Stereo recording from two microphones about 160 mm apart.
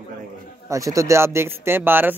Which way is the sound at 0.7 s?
20° right (ahead or behind).